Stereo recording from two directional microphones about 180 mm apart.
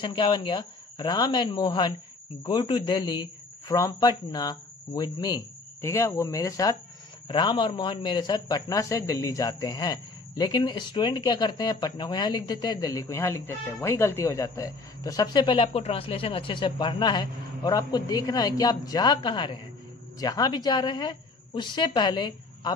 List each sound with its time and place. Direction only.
0.0 s a man's voice: 25° left (ahead or behind)